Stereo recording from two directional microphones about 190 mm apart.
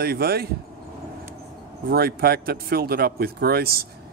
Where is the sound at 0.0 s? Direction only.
55° right (ahead or behind).